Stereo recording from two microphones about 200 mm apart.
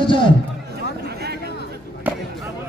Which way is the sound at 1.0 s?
50° right (ahead or behind).